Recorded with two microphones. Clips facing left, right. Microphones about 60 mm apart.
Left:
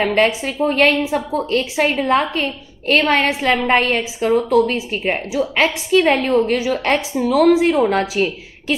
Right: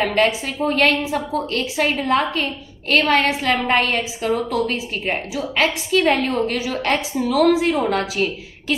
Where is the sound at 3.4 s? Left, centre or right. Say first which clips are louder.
Left 3 dB; left.